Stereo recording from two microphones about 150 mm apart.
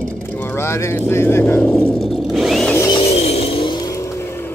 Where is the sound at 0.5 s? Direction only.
15° left (ahead or behind); by 2.7 s centre (ahead or behind).